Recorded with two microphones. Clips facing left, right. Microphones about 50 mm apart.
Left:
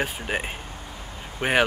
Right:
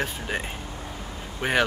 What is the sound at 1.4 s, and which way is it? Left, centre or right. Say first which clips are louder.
Speech: left 2 dB; left.